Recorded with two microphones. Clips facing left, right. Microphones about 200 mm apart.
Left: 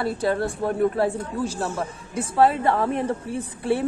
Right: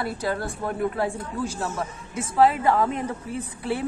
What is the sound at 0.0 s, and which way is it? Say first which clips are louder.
Speech: left 4 dB; 30° left (ahead or behind).